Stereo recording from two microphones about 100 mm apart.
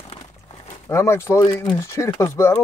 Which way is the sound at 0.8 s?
25° left (ahead or behind).